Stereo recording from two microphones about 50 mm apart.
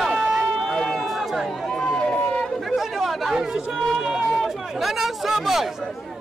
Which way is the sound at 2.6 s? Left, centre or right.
Centre.